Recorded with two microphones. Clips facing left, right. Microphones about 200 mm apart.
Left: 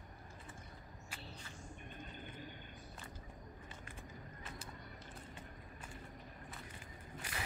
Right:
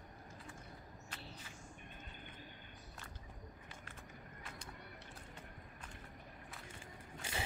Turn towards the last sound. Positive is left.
turn(degrees=-25)  # may be behind; listen again after turning